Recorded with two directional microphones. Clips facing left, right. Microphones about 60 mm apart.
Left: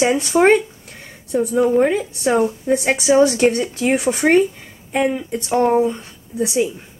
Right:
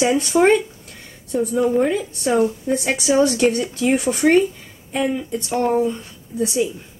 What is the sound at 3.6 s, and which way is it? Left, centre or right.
Speech, left.